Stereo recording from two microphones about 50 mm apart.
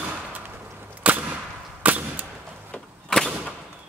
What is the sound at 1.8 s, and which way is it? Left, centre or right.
Gunshot, right.